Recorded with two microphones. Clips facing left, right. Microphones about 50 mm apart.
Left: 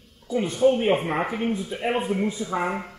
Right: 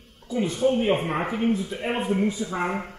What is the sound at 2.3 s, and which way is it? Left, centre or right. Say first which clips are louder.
Speech: even; left.